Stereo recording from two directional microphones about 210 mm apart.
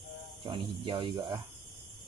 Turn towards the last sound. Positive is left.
turn(degrees=-25)  # may be behind; listen again after turning